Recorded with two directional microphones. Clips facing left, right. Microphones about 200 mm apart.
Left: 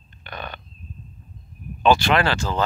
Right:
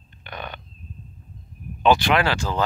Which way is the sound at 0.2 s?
15° right (ahead or behind).